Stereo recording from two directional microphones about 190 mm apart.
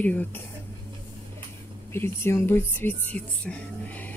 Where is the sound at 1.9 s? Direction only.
15° left (ahead or behind).